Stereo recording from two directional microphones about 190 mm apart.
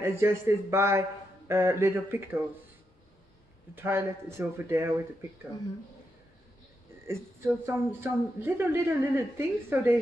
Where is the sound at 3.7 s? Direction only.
10° right (ahead or behind).